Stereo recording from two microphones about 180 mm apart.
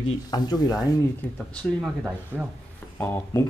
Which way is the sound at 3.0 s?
15° left (ahead or behind).